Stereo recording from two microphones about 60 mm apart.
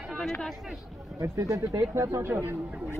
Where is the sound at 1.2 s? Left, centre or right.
Right.